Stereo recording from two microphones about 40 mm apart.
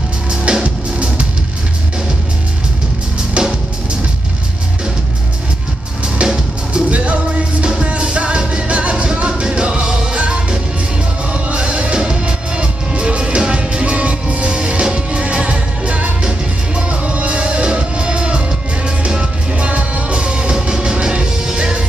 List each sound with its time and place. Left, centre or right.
0.5 s music: right
3.4 s music: right
6.7 s music: right
11.4 s music: right
19.5 s music: right; by 21.8 s centre